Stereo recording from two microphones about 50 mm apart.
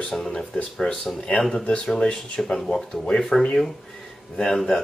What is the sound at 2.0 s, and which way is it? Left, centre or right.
Speech, centre.